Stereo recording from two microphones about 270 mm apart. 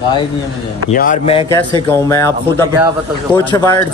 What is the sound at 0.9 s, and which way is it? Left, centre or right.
Speech, left.